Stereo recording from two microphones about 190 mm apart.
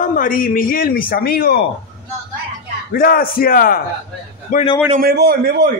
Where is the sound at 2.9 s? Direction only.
50° left (ahead or behind).